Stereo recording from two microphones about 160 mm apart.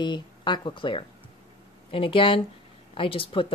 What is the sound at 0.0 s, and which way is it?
Speech, 30° left (ahead or behind).